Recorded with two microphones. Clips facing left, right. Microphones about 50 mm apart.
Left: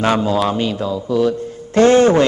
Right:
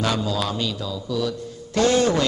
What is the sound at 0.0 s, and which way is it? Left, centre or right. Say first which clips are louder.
A man's voice: left 8 dB; left.